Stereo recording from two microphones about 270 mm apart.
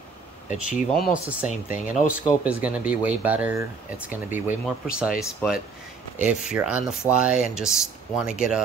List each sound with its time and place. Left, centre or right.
0.5 s speech: left
1.3 s speech: centre